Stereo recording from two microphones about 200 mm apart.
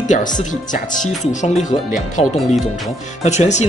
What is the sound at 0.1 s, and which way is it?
Speech, 40° left (ahead or behind).